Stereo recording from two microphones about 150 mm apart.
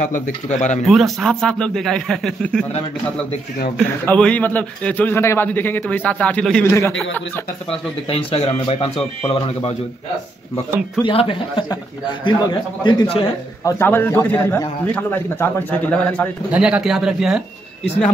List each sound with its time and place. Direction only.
0.0 s a man's voice: 55° left (ahead or behind)
0.8 s a man's voice: centre (ahead or behind)
4.0 s a man's voice: 10° left (ahead or behind)
6.6 s a man's voice: 15° left (ahead or behind)
7.7 s speech: 40° left (ahead or behind)
11.1 s speech: 35° left (ahead or behind)
12.8 s speech: 35° left (ahead or behind)
13.7 s a man's voice: 15° left (ahead or behind)
16.5 s a man's voice: 5° right (ahead or behind)